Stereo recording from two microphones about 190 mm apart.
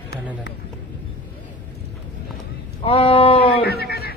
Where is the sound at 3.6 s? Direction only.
55° left (ahead or behind).